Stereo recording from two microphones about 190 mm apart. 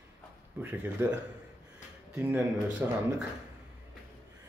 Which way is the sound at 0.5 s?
10° right (ahead or behind).